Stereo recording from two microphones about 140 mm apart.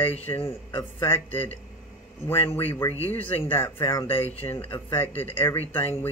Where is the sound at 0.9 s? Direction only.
15° left (ahead or behind).